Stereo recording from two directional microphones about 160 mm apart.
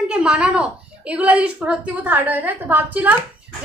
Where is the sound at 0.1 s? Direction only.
5° right (ahead or behind).